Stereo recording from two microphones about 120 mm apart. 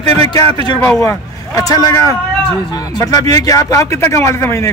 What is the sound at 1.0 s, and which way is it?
Speech, 25° left (ahead or behind).